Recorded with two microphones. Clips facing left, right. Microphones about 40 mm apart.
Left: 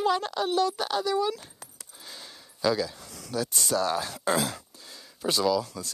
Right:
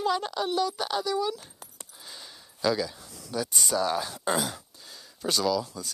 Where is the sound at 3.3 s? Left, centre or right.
Centre.